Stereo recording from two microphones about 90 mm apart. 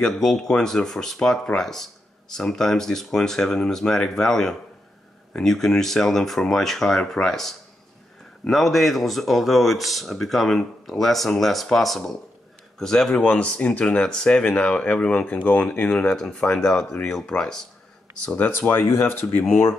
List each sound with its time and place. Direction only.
0.0 s speech: 5° left (ahead or behind); by 19.4 s 25° left (ahead or behind)